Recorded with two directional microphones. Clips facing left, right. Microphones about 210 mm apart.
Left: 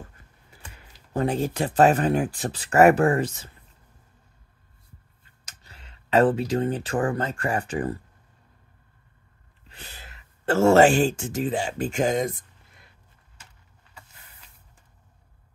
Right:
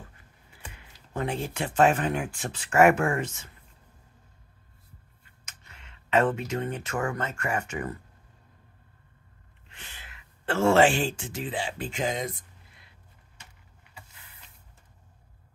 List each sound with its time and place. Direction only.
0.5 s computer keyboard: 40° left (ahead or behind)
1.1 s speech: 40° left (ahead or behind)
5.4 s speech: 35° left (ahead or behind)
9.7 s speech: 35° left (ahead or behind)